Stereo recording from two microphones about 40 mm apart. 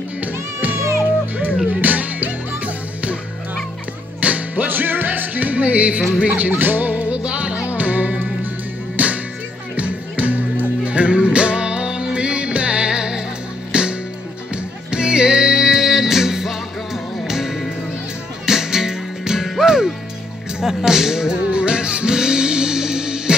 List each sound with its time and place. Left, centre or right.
0.2 s music: right
4.2 s music: right
7.6 s music: right; by 21.4 s centre
21.4 s music: right